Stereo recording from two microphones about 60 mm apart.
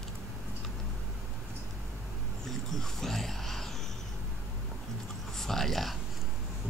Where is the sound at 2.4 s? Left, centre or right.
Centre.